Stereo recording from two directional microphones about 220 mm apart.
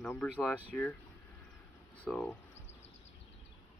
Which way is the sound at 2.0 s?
5° left (ahead or behind).